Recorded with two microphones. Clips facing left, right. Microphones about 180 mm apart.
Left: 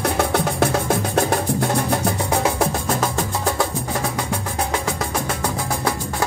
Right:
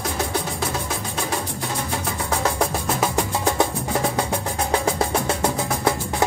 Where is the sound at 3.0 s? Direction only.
15° right (ahead or behind).